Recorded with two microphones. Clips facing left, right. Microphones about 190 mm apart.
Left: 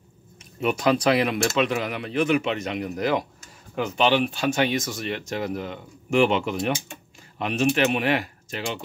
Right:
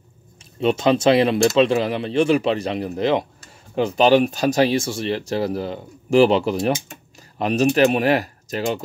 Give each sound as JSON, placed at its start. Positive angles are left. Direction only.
{"t": 0.6, "sound": "speech", "side_deg": -25}